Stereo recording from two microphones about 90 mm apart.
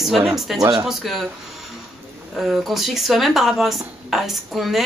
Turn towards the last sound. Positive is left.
turn(degrees=0)  # may be behind; listen again after turning